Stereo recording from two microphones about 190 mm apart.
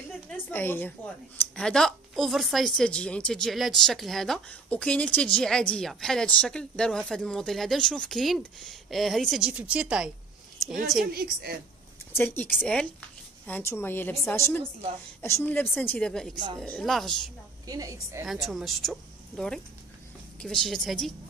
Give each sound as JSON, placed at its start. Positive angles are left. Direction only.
{"t": 0.3, "sound": "speech", "side_deg": 10}
{"t": 11.1, "sound": "a woman's voice", "side_deg": -55}
{"t": 12.1, "sound": "a woman's voice", "side_deg": 10}
{"t": 17.6, "sound": "a woman's voice", "side_deg": -20}
{"t": 18.2, "sound": "speech", "side_deg": 0}